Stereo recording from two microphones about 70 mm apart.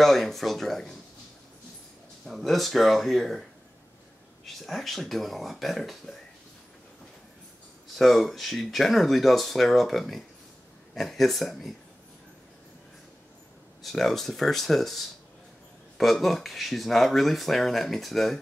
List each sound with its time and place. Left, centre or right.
0.0 s speech: centre
2.2 s speech: centre
4.6 s speech: centre
7.9 s speech: centre
13.8 s speech: centre